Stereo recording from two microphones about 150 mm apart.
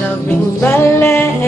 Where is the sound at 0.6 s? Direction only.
15° left (ahead or behind).